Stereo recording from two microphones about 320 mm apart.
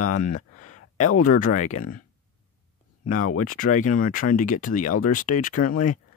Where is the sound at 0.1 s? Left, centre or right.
Left.